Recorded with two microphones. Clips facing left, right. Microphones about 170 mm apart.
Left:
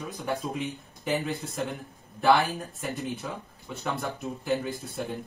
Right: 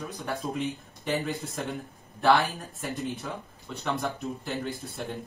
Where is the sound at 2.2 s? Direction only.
Centre (ahead or behind).